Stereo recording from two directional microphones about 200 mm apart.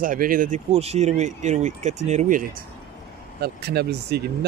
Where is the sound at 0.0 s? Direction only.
45° right (ahead or behind).